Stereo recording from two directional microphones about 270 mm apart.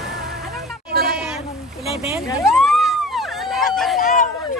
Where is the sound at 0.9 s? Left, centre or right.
Right.